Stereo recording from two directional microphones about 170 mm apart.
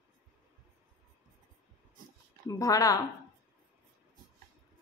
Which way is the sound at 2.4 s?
20° left (ahead or behind).